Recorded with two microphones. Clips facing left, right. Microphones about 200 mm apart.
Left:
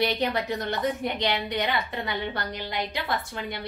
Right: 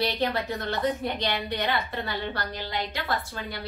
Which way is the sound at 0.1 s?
15° left (ahead or behind).